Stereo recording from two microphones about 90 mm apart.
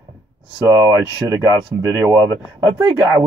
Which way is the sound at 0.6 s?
30° right (ahead or behind).